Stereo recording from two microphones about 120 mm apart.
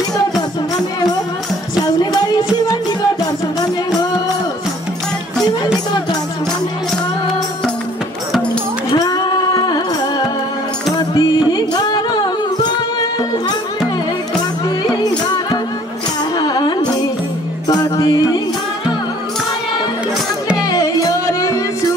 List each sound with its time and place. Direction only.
8.9 s music: 35° left (ahead or behind)
11.0 s music: 35° left (ahead or behind)
15.2 s music: 35° left (ahead or behind)
20.6 s music: 30° left (ahead or behind)